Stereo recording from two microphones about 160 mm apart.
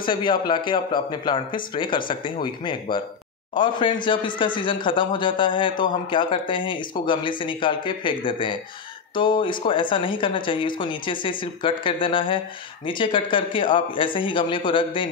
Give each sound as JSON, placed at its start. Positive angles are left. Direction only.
{"t": 0.0, "sound": "a man's voice", "side_deg": 30}